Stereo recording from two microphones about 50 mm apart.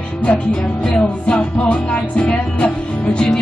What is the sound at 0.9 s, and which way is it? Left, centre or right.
Music, left.